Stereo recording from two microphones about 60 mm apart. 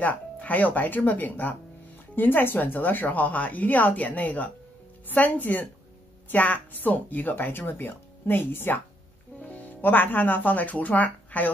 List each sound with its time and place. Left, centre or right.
0.0 s a woman's voice: left